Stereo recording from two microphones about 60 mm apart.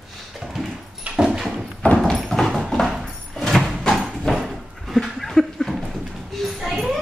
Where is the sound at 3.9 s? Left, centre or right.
Centre.